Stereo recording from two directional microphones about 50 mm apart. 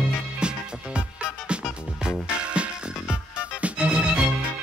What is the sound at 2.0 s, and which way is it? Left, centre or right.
Music, right.